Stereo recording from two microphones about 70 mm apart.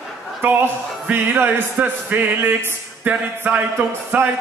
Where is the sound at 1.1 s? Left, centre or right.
Right.